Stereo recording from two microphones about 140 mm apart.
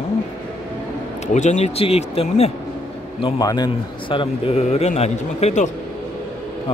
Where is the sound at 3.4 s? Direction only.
30° left (ahead or behind).